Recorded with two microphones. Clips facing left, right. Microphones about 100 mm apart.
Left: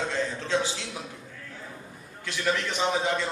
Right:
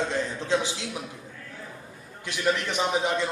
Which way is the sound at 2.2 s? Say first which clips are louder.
Right 2 dB; 20° right (ahead or behind).